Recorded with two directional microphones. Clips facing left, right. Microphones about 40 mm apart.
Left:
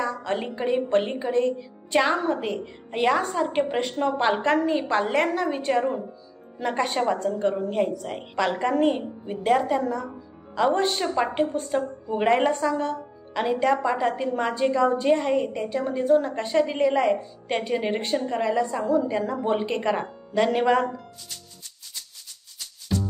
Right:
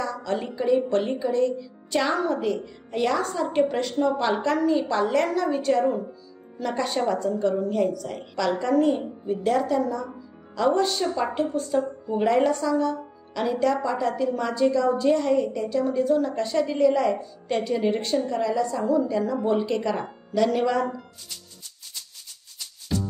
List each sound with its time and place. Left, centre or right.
0.0 s a woman's voice: left
22.9 s music: centre